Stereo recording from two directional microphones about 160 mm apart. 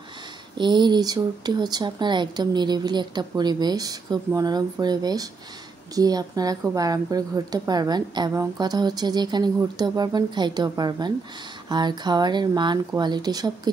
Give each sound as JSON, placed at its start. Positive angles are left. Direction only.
{"t": 0.6, "sound": "a woman's voice", "side_deg": -30}